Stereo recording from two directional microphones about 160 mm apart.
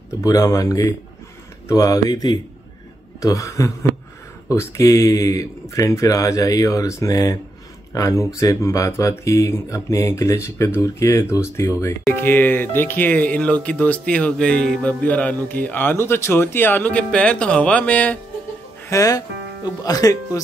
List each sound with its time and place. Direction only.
0.2 s speech: 20° left (ahead or behind)
18.9 s speech: 20° left (ahead or behind)